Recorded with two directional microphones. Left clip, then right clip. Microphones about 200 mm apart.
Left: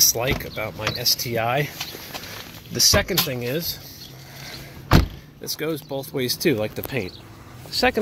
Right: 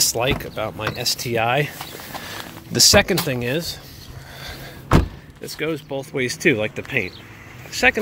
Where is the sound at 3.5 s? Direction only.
30° right (ahead or behind).